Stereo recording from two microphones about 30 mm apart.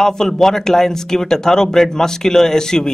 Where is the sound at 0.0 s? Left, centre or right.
Centre.